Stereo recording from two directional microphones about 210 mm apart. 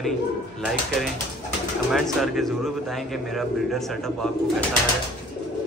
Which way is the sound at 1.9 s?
Centre (ahead or behind).